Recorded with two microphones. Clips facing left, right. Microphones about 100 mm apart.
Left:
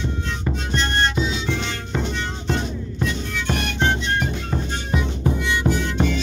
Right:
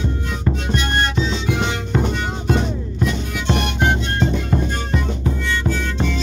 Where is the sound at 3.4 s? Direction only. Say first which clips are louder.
Right 3 dB; 15° right (ahead or behind).